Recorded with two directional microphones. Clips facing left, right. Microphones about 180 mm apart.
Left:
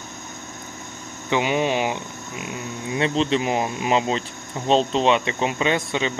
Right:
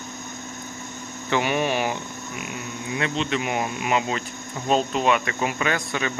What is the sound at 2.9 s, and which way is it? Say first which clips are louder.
Speech: left 5 dB; 30° left (ahead or behind).